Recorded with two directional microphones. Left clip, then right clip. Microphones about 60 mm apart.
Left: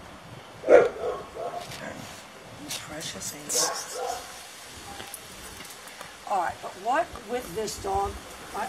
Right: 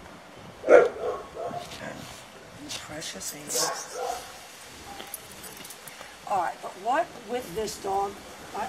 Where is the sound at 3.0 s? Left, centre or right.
Centre.